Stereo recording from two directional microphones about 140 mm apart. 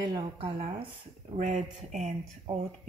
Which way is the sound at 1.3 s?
60° right (ahead or behind).